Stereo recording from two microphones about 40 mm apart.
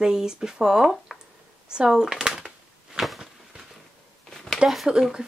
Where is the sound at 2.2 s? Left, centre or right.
Centre.